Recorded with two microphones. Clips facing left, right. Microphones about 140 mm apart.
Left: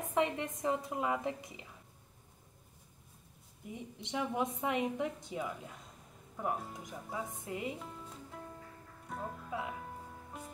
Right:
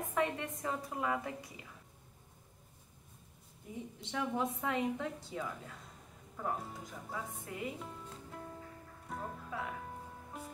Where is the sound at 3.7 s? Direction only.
15° left (ahead or behind).